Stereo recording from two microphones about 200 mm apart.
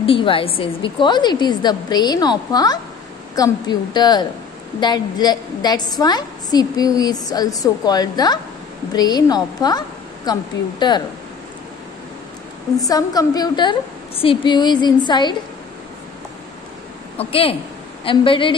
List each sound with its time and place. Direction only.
0.0 s a woman's voice: 25° left (ahead or behind)
12.7 s a woman's voice: 20° left (ahead or behind)
17.2 s a woman's voice: 30° left (ahead or behind)